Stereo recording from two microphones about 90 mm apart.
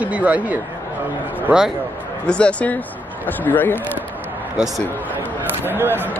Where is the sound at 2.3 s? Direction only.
10° left (ahead or behind).